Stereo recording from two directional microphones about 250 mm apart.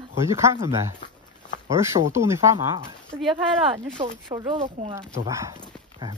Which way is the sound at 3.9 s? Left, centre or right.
Centre.